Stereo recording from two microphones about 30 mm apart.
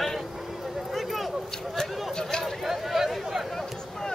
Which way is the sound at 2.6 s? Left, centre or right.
Centre.